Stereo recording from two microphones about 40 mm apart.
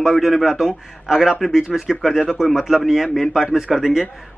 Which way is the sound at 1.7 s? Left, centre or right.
Centre.